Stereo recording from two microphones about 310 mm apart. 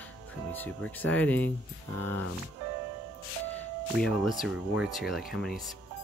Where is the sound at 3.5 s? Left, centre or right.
Centre.